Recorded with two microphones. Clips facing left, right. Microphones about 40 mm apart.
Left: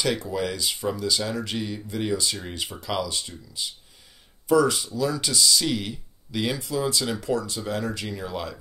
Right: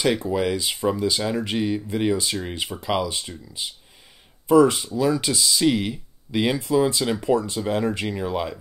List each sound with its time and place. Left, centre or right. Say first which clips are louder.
0.2 s speech: right 5 dB; centre